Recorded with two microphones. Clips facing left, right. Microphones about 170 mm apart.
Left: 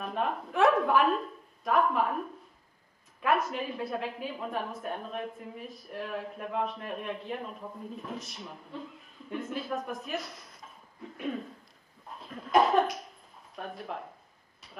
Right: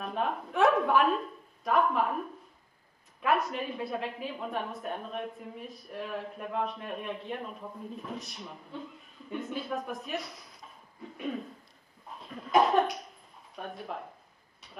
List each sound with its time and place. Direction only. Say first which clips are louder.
0.0 s a woman's voice: even; centre (ahead or behind)
12.1 s cough: even; centre (ahead or behind)
13.6 s a woman's voice: even; centre (ahead or behind)